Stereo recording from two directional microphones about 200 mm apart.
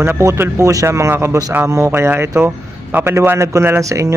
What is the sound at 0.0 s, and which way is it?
Speech, 15° right (ahead or behind).